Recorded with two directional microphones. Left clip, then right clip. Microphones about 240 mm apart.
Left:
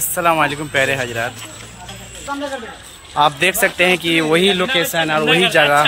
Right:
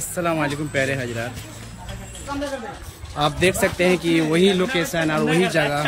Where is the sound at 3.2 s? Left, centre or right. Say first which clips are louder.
Left 5 dB; centre.